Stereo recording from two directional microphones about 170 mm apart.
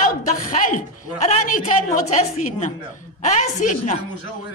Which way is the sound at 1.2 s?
40° left (ahead or behind).